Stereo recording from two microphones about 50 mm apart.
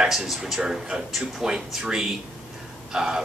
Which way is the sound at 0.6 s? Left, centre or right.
Centre.